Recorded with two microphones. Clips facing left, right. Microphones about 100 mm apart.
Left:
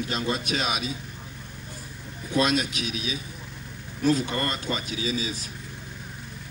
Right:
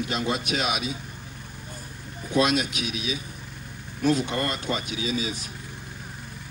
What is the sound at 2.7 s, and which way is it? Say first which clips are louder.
Speech: right 1 dB; 40° left (ahead or behind).